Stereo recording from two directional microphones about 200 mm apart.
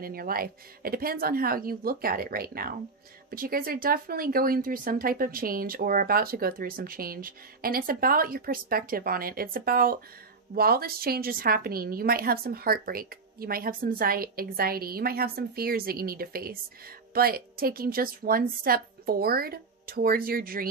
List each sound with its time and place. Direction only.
0.0 s speech: 45° right (ahead or behind)